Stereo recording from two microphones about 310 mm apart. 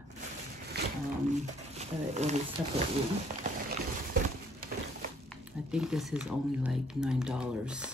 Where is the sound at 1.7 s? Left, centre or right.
Right.